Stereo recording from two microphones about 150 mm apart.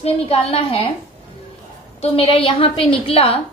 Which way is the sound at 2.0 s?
40° left (ahead or behind).